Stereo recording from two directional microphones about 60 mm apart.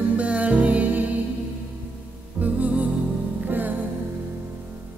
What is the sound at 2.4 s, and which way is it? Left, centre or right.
Music, right.